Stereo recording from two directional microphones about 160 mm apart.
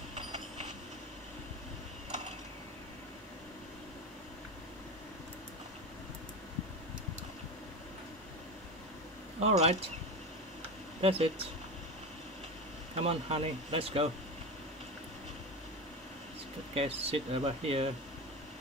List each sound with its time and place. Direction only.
9.4 s a sound: 40° right (ahead or behind)
11.0 s speech: 35° right (ahead or behind)
12.9 s speech: 40° right (ahead or behind)
16.7 s speech: 35° right (ahead or behind)